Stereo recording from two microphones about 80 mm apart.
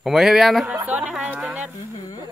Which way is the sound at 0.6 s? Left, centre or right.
Centre.